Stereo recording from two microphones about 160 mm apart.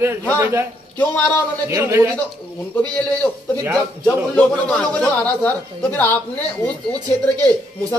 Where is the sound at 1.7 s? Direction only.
15° right (ahead or behind).